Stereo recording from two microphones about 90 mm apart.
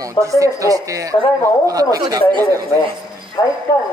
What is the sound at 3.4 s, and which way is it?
Speech, 50° left (ahead or behind).